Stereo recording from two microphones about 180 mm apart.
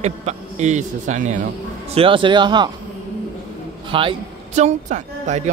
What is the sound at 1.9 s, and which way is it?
Speech, 30° right (ahead or behind).